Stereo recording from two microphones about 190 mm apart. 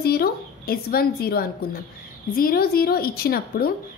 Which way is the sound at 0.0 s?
55° left (ahead or behind).